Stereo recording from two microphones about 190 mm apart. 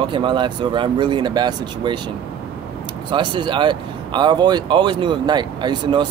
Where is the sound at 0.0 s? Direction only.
25° right (ahead or behind).